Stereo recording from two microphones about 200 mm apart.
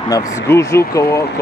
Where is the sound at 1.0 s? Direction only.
50° left (ahead or behind).